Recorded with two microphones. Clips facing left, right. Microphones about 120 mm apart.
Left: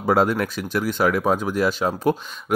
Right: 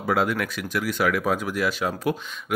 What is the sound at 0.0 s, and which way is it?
Speech, 35° left (ahead or behind).